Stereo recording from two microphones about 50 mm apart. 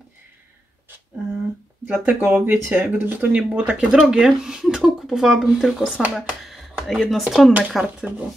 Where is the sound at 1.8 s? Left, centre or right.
Right; by 7.9 s centre.